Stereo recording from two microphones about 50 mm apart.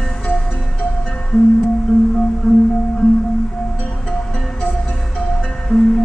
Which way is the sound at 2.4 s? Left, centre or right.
Centre.